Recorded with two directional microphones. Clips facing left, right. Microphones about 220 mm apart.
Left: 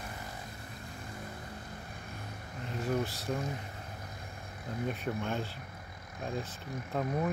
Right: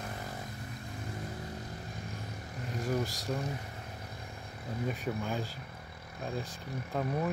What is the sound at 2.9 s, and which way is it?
Vehicle, centre (ahead or behind).